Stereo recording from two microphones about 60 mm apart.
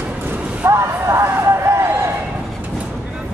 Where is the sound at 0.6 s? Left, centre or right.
Right.